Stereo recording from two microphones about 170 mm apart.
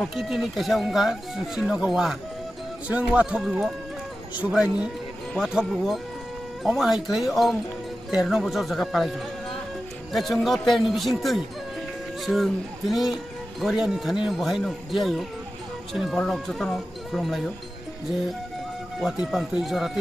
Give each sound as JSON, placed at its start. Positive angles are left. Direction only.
{"t": 0.0, "sound": "speech", "side_deg": 0}
{"t": 10.1, "sound": "speech", "side_deg": 0}
{"t": 18.9, "sound": "speech", "side_deg": 0}